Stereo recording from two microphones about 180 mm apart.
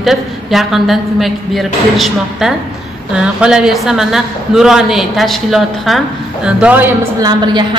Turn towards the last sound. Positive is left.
turn(degrees=-25)  # may be behind; listen again after turning